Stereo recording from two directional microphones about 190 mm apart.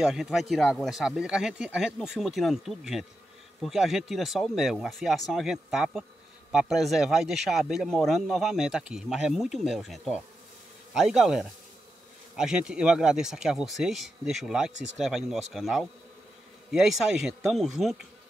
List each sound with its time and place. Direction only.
0.0 s speech: centre (ahead or behind)